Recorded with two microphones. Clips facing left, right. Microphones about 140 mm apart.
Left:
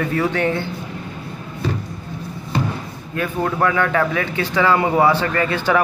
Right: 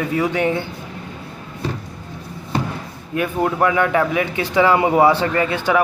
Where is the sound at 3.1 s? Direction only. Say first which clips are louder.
Right 2 dB; 15° right (ahead or behind).